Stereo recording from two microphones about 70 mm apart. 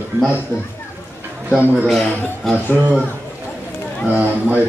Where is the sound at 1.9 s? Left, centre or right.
Centre.